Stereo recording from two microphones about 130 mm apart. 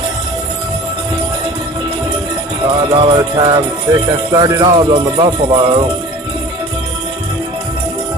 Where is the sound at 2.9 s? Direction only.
40° right (ahead or behind).